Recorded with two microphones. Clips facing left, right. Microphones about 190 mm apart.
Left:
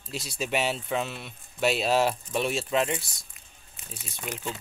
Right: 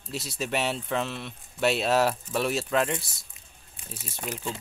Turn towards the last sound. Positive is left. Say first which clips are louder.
# right 1 dB
turn(degrees=-35)  # may be behind; listen again after turning